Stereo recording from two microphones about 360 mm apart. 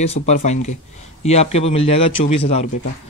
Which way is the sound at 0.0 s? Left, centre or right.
Centre.